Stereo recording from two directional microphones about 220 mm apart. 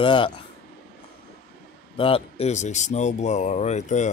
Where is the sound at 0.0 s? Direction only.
20° left (ahead or behind).